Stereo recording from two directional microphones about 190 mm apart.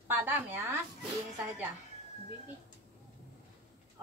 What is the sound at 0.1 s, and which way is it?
Speech, 10° right (ahead or behind).